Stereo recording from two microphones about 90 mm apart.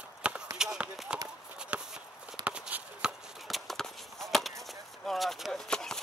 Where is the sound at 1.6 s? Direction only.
10° right (ahead or behind).